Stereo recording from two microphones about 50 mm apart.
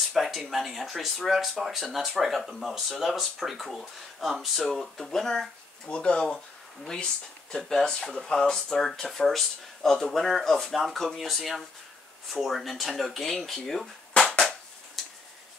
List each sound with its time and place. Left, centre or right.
0.1 s speech: centre
5.9 s speech: left; by 13.8 s centre
14.1 s a sound: centre
15.0 s tick-tock: centre